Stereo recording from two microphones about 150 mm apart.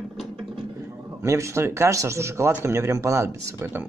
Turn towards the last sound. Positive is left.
turn(degrees=-15)  # may be behind; listen again after turning